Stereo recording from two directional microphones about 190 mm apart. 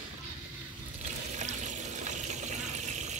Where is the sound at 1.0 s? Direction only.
40° right (ahead or behind).